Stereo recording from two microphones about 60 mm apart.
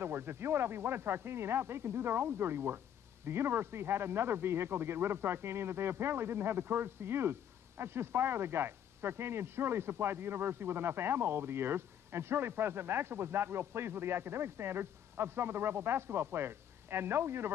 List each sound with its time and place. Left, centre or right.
0.0 s speech: right